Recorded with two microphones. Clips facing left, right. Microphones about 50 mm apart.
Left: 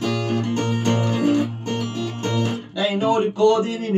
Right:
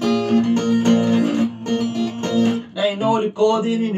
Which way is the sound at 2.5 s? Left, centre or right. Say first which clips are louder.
Right 3 dB; centre.